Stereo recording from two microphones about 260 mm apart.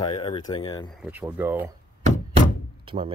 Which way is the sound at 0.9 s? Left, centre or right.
Centre.